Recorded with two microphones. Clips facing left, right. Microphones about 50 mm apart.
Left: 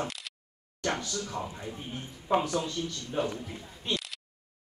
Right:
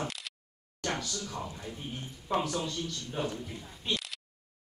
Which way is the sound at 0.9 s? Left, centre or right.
Left.